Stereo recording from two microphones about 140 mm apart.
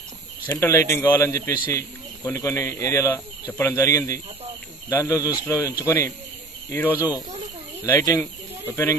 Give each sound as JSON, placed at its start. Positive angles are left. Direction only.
{"t": 0.5, "sound": "speech", "side_deg": 20}